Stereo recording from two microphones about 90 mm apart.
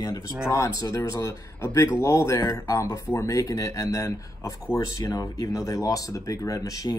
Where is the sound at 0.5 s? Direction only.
35° left (ahead or behind).